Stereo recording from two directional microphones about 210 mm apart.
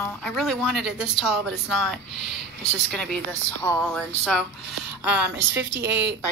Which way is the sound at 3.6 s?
10° left (ahead or behind).